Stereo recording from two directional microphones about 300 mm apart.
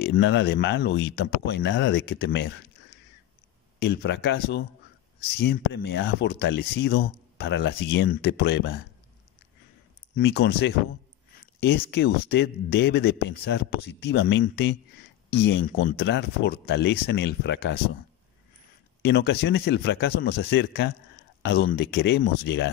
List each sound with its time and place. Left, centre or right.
0.0 s speech: left
3.8 s speech: left
10.1 s speech: left
19.0 s speech: left